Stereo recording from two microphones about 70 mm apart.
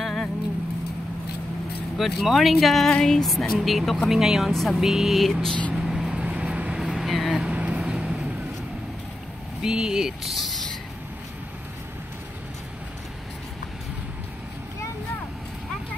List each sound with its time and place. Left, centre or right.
0.0 s vehicle: centre
2.0 s speech: centre
4.7 s speech: centre
5.9 s vehicle: centre
6.1 s vehicle: centre
6.8 s vehicle: centre
9.6 s speech: centre